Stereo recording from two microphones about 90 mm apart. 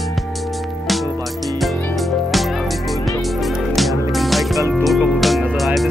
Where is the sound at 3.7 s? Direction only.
Centre (ahead or behind).